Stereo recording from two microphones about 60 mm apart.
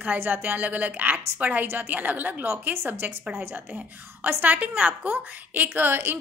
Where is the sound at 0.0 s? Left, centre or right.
Right.